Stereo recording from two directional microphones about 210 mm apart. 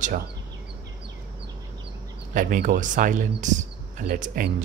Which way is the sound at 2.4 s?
40° right (ahead or behind).